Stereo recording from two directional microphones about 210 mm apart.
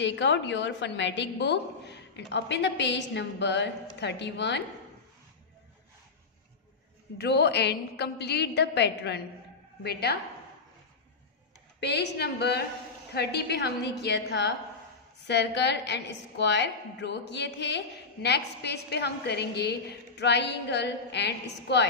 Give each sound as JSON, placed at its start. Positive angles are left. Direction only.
{"t": 0.0, "sound": "a woman's voice", "side_deg": 55}
{"t": 7.2, "sound": "a woman's voice", "side_deg": 50}
{"t": 11.8, "sound": "a woman's voice", "side_deg": 50}